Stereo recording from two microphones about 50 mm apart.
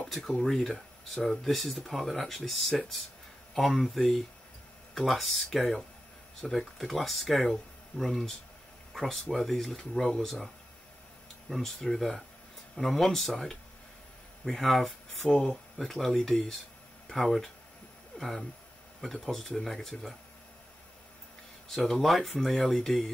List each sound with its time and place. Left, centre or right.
0.1 s speech: centre
15.2 s speech: centre
15.8 s speech: centre
21.6 s speech: centre